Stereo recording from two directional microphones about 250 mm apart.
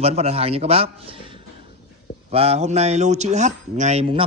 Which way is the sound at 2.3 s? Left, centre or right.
Right.